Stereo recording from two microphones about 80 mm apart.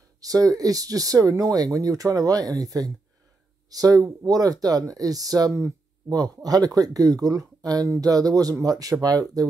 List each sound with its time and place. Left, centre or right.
0.2 s speech: right